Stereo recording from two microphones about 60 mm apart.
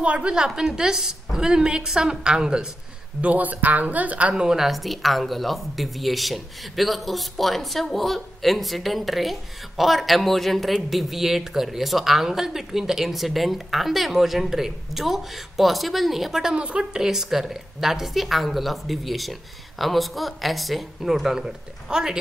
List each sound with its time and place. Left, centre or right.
0.0 s a woman's voice: centre
3.2 s a woman's voice: right
4.4 s speech: centre
16.5 s a woman's voice: centre
17.0 s speech: centre